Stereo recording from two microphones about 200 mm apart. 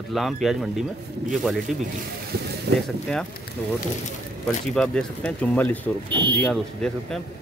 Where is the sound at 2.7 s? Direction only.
55° right (ahead or behind).